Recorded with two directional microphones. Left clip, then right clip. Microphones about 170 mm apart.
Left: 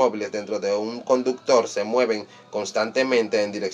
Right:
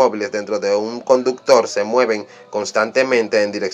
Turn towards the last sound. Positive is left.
turn(degrees=-25)  # may be behind; listen again after turning